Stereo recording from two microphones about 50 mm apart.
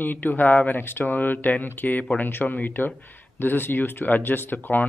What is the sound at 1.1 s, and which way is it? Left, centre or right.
Speech, left.